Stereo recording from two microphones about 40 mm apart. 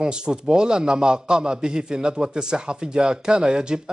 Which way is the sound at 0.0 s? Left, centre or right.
Right.